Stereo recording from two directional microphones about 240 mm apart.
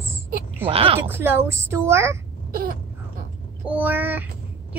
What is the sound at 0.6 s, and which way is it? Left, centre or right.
Speech, right.